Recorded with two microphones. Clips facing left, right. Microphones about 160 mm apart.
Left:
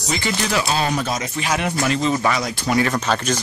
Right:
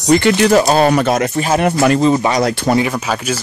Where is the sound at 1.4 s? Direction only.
45° right (ahead or behind).